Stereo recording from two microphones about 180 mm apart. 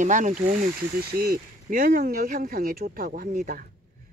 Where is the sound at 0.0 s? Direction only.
45° right (ahead or behind).